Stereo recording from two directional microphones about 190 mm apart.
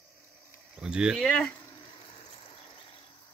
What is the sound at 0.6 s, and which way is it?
Cricket, 5° right (ahead or behind).